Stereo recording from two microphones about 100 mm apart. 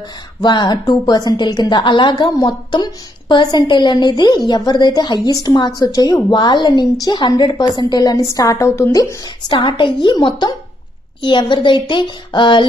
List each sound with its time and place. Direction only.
0.4 s speech: 50° left (ahead or behind)
6.3 s speech: 50° left (ahead or behind); by 9.0 s 30° left (ahead or behind)
9.5 s speech: 50° left (ahead or behind)